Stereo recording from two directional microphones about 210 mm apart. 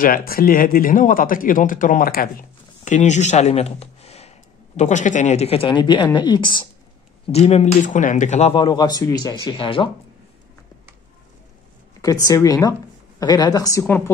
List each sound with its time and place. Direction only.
0.0 s speech: 45° left (ahead or behind); by 9.8 s 25° left (ahead or behind)
12.0 s a woman's voice: 15° left (ahead or behind)